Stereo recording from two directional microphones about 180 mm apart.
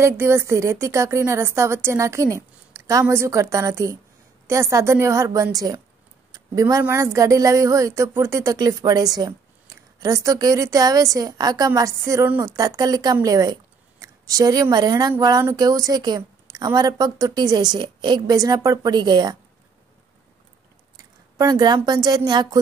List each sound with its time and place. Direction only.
0.0 s a woman's voice: 15° right (ahead or behind)
20.9 s a woman's voice: 20° right (ahead or behind)